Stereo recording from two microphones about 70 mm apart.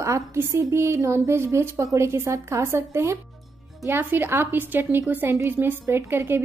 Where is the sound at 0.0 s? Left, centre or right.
Right.